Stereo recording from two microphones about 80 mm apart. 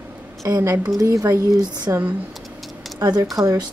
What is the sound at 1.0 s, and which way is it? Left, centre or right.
Speech, right.